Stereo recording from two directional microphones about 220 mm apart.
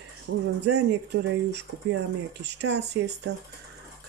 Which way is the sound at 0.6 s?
50° right (ahead or behind).